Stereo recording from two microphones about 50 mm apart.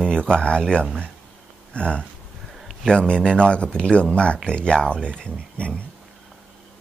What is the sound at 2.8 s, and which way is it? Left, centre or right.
Speech, centre.